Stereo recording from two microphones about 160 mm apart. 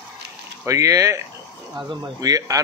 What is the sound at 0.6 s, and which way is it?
Speech, 20° right (ahead or behind).